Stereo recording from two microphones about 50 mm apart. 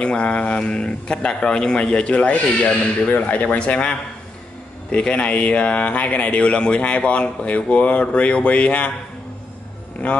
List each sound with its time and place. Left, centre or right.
0.0 s a man's voice: left
4.9 s a man's voice: left
10.0 s a man's voice: left